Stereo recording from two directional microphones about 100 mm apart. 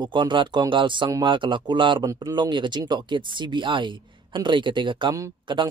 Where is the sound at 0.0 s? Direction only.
50° right (ahead or behind).